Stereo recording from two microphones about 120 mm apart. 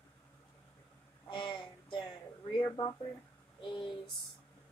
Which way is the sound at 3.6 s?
45° left (ahead or behind).